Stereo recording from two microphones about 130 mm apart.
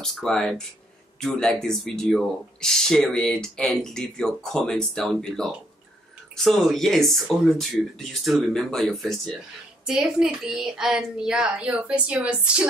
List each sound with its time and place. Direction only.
0.0 s speech: 5° left (ahead or behind)